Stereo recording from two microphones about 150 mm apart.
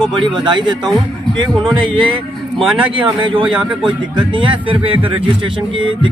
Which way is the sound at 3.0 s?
35° right (ahead or behind).